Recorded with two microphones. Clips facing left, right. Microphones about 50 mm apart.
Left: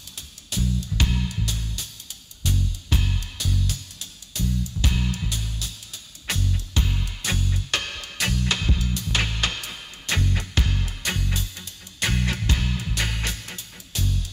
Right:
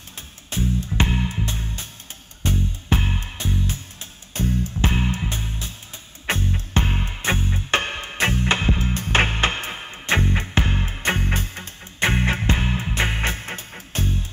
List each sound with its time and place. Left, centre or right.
0.5 s music: right